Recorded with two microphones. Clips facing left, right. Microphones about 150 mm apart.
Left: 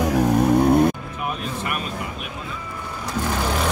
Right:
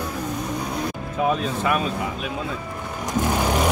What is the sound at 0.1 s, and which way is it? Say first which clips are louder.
Vehicle: left 11 dB; 65° left (ahead or behind).